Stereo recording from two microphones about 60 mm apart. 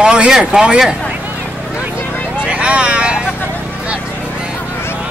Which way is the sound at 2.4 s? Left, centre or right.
Centre.